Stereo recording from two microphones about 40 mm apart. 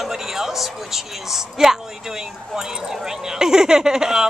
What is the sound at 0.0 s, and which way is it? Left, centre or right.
A woman's voice, centre.